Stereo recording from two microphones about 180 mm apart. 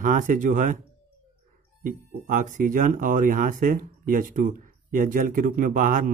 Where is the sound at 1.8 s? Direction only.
50° right (ahead or behind).